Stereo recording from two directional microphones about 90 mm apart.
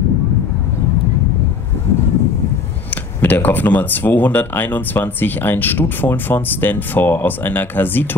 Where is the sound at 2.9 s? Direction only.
20° left (ahead or behind).